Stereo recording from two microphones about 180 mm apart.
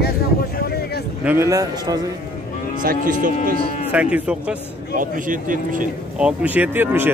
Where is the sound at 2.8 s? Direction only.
50° right (ahead or behind).